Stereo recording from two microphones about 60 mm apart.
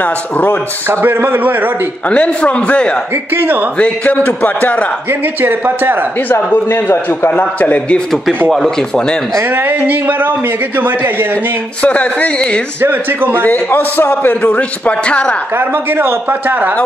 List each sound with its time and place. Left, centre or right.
0.0 s a man's voice: left
0.8 s a man's voice: right
2.0 s a man's voice: centre
3.3 s a man's voice: right
3.7 s a man's voice: left
5.4 s a man's voice: right
6.5 s a man's voice: left
8.5 s speech: centre
9.4 s a man's voice: right
11.8 s a man's voice: left
12.8 s a man's voice: right
13.4 s a man's voice: left
15.5 s a man's voice: right